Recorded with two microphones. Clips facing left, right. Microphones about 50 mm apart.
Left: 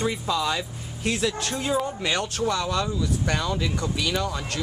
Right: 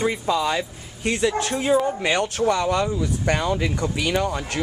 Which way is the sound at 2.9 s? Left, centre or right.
Right.